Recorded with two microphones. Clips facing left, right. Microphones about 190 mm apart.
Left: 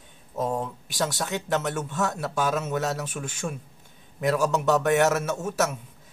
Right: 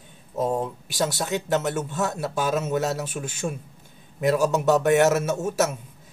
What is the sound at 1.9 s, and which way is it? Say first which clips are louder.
Speech: right 1 dB; 20° right (ahead or behind).